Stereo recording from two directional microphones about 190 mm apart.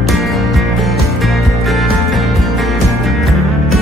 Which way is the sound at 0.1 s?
Centre (ahead or behind).